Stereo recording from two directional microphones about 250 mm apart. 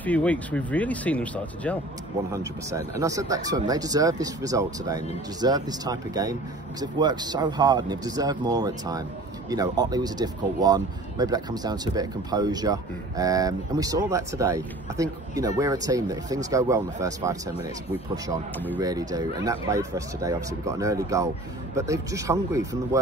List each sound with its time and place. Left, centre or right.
0.0 s speech: centre
2.3 s speech: centre